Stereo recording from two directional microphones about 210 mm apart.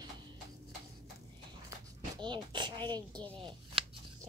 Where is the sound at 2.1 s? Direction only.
20° right (ahead or behind).